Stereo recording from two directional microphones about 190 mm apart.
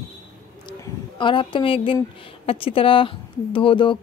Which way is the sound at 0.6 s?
25° left (ahead or behind).